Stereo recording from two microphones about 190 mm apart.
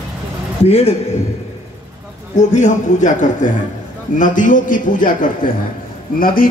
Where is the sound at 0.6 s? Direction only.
30° left (ahead or behind).